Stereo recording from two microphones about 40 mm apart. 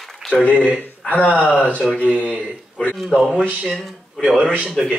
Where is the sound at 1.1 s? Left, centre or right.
Left.